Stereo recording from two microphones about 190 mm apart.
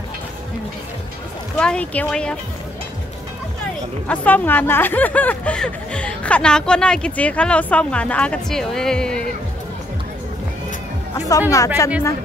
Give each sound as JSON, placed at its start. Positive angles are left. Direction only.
{"t": 1.6, "sound": "speech", "side_deg": 5}
{"t": 4.1, "sound": "speech", "side_deg": 10}
{"t": 11.1, "sound": "speech", "side_deg": 20}